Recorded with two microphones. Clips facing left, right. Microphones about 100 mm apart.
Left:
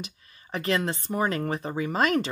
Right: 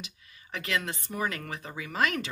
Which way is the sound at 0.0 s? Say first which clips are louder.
Left 6 dB; 35° left (ahead or behind).